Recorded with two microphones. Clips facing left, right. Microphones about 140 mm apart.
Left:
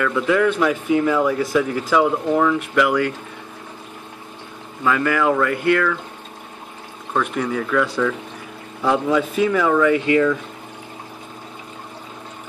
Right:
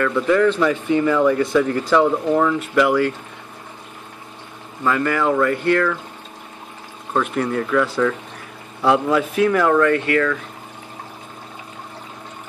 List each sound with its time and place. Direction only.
0.0 s speech: 5° left (ahead or behind)
4.8 s speech: centre (ahead or behind)
7.3 s speech: centre (ahead or behind)
10.0 s speech: 20° left (ahead or behind)